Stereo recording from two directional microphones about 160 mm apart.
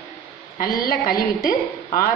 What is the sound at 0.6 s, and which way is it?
Speech, 65° left (ahead or behind).